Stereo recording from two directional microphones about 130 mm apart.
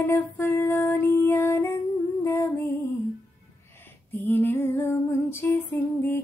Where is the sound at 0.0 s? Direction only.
15° left (ahead or behind).